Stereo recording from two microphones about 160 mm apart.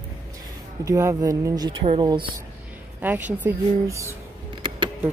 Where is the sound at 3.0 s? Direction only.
10° right (ahead or behind).